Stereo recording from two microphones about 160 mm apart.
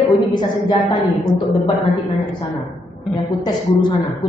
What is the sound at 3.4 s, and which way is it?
Speech, 30° left (ahead or behind).